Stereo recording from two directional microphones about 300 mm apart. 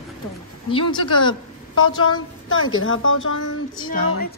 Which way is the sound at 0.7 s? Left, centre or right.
Centre.